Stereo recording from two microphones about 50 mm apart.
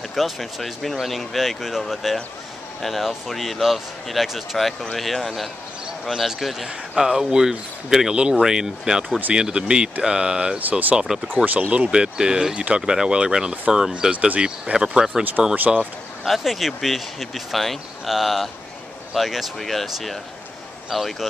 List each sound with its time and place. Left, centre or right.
0.1 s speech: centre
10.7 s speech: right
11.0 s speech: centre
11.3 s speech: right; by 14.1 s centre
14.1 s speech: right
14.4 s speech: centre
15.5 s speech: right
16.3 s speech: centre